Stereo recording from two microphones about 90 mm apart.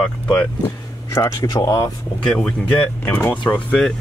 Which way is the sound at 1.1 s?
30° left (ahead or behind).